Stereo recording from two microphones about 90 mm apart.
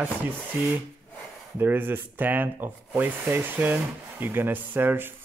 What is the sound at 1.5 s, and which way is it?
Speech, 25° right (ahead or behind).